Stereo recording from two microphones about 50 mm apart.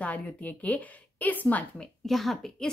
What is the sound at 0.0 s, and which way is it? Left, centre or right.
A woman's voice, left.